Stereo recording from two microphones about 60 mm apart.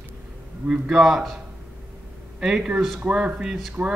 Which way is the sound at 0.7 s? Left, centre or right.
Centre.